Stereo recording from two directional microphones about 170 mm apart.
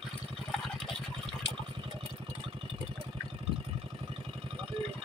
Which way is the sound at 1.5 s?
30° right (ahead or behind).